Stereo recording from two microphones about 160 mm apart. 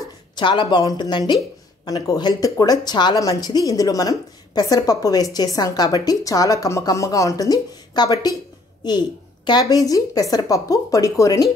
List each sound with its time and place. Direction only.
0.4 s speech: 30° left (ahead or behind)